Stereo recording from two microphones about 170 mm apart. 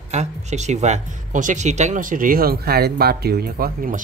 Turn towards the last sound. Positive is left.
turn(degrees=-60)  # may be behind; listen again after turning